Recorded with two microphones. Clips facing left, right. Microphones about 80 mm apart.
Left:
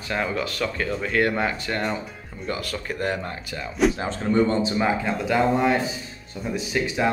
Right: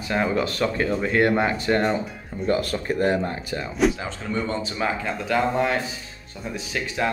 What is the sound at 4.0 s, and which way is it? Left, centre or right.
Speech, left.